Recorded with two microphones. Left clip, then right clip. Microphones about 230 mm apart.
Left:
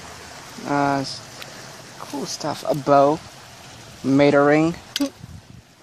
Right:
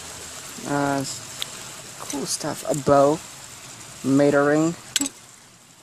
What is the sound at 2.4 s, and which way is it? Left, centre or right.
Speech, centre.